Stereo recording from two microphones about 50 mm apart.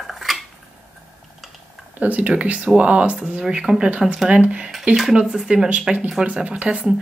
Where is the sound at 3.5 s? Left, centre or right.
Centre.